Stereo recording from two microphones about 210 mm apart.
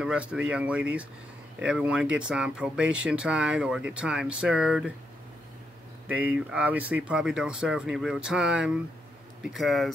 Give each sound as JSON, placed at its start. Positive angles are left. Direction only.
{"t": 0.0, "sound": "speech", "side_deg": -5}
{"t": 6.0, "sound": "speech", "side_deg": -5}